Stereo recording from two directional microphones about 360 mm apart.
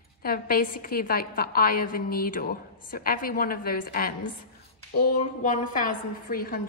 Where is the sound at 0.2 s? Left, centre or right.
Left.